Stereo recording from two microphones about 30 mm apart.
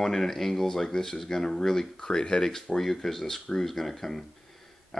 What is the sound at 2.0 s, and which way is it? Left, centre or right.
Speech, left.